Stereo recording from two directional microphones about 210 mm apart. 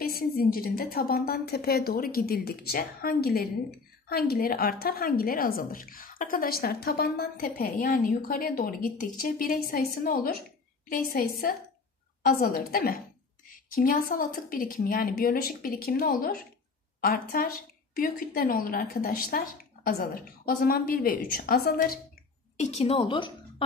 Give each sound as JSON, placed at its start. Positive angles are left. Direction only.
{"t": 0.0, "sound": "a woman's voice", "side_deg": 45}
{"t": 22.6, "sound": "a woman's voice", "side_deg": 30}